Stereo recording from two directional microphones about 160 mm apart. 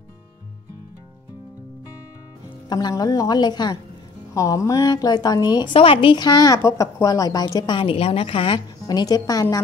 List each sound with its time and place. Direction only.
2.7 s a woman's voice: 25° left (ahead or behind)